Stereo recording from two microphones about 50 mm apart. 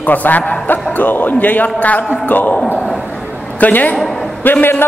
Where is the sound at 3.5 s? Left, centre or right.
Left.